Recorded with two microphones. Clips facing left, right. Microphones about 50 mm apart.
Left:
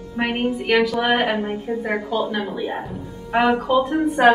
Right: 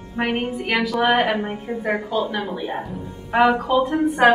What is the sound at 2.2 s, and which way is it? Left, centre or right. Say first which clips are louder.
A woman's voice: left 1 dB; centre.